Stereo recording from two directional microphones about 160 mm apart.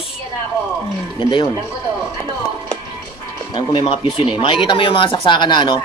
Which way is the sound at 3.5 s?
30° left (ahead or behind).